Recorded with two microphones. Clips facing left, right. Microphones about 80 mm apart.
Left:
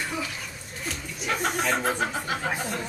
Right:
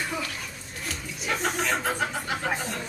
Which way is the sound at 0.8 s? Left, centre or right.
Centre.